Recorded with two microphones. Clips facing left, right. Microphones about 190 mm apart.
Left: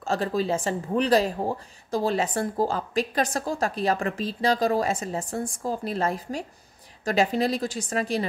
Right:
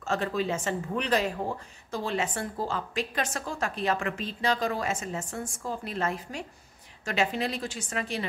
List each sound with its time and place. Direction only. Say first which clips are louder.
0.0 s a woman's voice: left 3 dB; 35° left (ahead or behind)